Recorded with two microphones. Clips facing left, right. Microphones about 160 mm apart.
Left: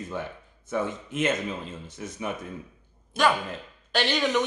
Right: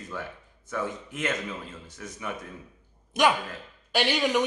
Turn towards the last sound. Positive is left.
turn(degrees=-10)  # may be behind; listen again after turning